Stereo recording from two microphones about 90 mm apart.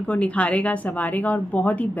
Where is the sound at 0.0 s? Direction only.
15° left (ahead or behind).